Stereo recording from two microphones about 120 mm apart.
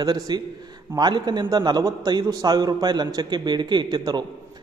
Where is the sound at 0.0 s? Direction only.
35° right (ahead or behind).